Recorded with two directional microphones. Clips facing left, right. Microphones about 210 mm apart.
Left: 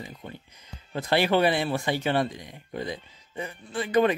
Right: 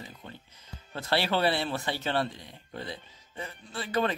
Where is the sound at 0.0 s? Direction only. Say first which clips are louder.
Left 5 dB; 15° left (ahead or behind).